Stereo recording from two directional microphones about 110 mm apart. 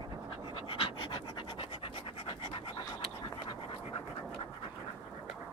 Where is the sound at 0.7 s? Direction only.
50° left (ahead or behind).